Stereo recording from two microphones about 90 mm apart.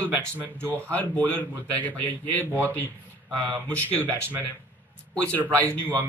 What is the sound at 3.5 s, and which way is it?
Speech, 15° left (ahead or behind).